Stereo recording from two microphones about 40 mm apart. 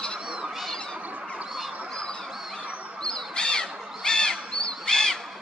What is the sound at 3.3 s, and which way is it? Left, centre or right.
Owl, left.